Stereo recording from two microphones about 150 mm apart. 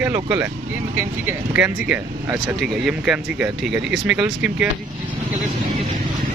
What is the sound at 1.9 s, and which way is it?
Speech, 15° right (ahead or behind).